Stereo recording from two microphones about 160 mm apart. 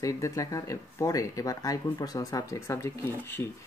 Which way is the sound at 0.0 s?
20° left (ahead or behind).